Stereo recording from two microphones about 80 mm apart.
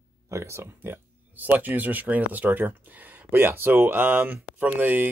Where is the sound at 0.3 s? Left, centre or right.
Right.